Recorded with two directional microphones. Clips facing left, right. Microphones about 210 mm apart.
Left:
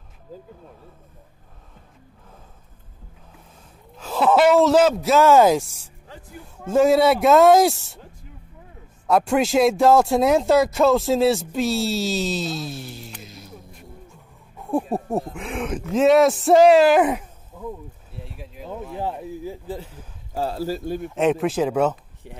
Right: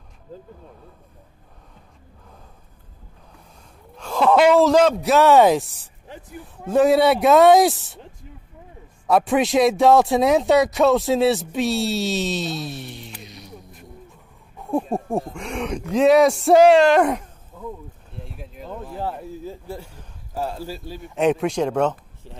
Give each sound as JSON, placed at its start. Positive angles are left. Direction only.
{"t": 4.0, "sound": "speech", "side_deg": 5}
{"t": 6.0, "sound": "a sound", "side_deg": -20}
{"t": 6.3, "sound": "speech", "side_deg": 0}
{"t": 9.0, "sound": "speech", "side_deg": 0}
{"t": 18.9, "sound": "speech", "side_deg": 15}
{"t": 20.3, "sound": "speech", "side_deg": 35}
{"t": 21.0, "sound": "speech", "side_deg": 0}